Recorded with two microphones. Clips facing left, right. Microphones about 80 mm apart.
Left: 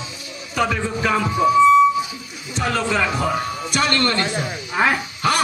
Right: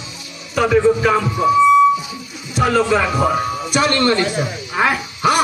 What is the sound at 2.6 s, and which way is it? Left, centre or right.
Speech, centre.